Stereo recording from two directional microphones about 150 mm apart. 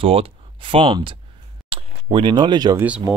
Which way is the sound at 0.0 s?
35° right (ahead or behind).